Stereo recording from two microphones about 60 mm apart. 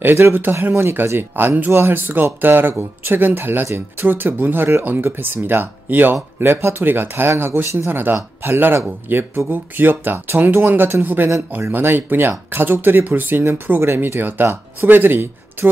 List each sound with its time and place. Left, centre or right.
0.0 s speech: right